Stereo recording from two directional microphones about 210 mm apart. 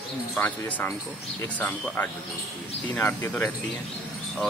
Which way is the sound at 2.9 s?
10° left (ahead or behind).